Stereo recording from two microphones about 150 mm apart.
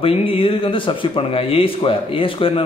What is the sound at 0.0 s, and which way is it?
A man's voice, 40° left (ahead or behind).